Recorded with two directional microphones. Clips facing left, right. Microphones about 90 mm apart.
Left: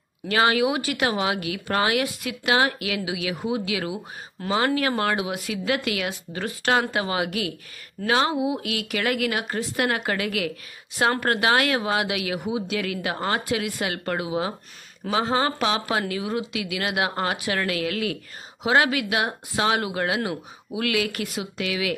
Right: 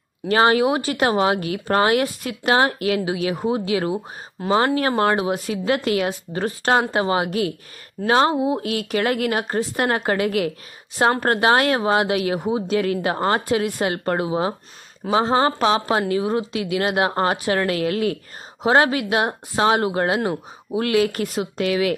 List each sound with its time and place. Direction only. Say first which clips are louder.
0.3 s a woman's voice: right 4 dB; 35° right (ahead or behind)